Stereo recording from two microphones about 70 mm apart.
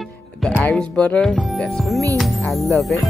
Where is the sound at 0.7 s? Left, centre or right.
Centre.